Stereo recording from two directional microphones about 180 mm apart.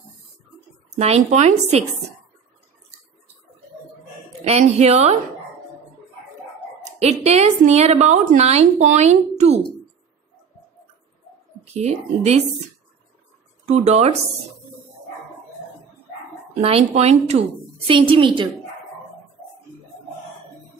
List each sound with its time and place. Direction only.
0.9 s a woman's voice: 35° right (ahead or behind)
4.5 s a woman's voice: 35° right (ahead or behind)
6.8 s a woman's voice: 35° right (ahead or behind)
11.7 s a woman's voice: 40° right (ahead or behind)
13.7 s a woman's voice: 35° right (ahead or behind)
16.6 s a woman's voice: 35° right (ahead or behind)